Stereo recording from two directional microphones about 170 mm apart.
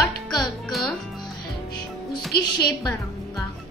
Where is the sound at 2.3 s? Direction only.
70° left (ahead or behind).